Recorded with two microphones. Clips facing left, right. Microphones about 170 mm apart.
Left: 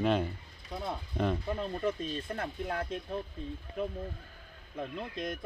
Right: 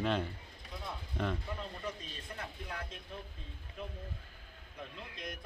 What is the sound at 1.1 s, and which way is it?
Speech, 20° left (ahead or behind).